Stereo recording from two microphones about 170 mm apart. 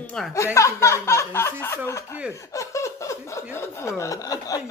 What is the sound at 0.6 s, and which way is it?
Speech, 15° left (ahead or behind).